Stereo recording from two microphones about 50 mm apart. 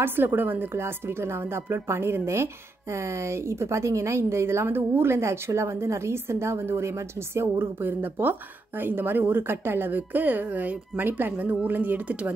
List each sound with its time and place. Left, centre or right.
0.0 s speech: right
6.8 s speech: right
7.8 s speech: right